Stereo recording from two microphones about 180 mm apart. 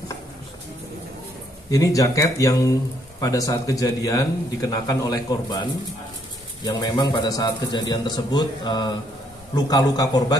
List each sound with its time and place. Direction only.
1.7 s a man's voice: 20° left (ahead or behind)